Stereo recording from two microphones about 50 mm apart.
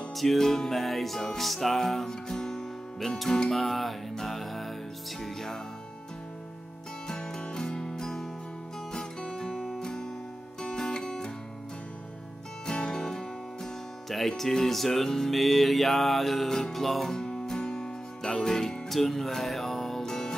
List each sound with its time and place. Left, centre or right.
0.1 s music: centre
7.1 s music: centre
12.6 s music: centre
17.2 s music: centre